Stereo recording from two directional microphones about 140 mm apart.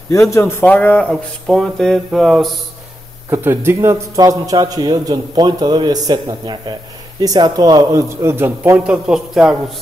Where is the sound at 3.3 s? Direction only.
15° right (ahead or behind).